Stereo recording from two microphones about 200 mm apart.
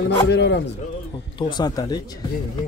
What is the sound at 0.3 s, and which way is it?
Speech, 55° left (ahead or behind).